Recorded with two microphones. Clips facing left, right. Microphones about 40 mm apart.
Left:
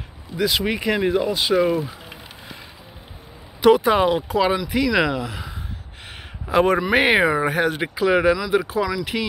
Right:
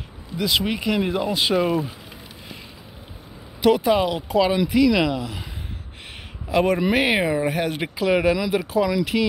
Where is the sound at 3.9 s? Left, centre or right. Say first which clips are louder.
Left 1 dB; centre.